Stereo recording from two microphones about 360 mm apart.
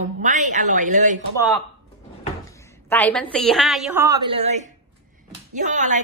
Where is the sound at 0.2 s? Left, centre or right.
Right.